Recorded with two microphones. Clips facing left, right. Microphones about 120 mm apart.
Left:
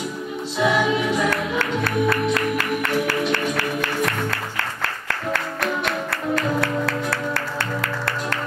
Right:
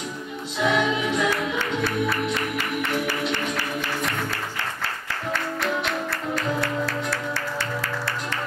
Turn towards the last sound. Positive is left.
turn(degrees=55)  # may be behind; listen again after turning